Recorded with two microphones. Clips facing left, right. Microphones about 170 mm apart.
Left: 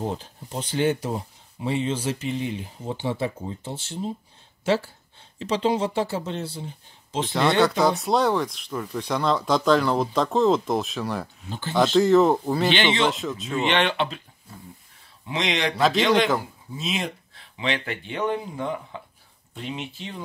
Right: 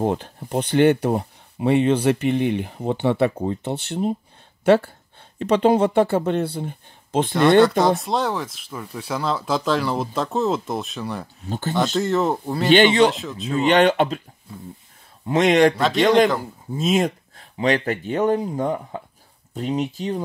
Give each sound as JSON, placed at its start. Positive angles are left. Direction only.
{"t": 0.0, "sound": "speech", "side_deg": -60}
{"t": 8.0, "sound": "speech", "side_deg": 0}
{"t": 11.4, "sound": "speech", "side_deg": -45}
{"t": 11.7, "sound": "speech", "side_deg": 0}
{"t": 13.6, "sound": "speech", "side_deg": -40}
{"t": 15.2, "sound": "speech", "side_deg": -50}
{"t": 15.8, "sound": "speech", "side_deg": 0}
{"t": 16.7, "sound": "speech", "side_deg": -45}